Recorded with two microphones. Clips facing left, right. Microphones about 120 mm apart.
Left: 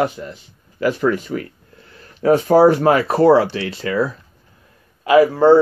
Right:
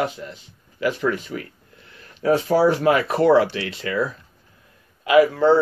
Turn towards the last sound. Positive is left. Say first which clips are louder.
# left 4 dB
turn(degrees=40)  # may be behind; listen again after turning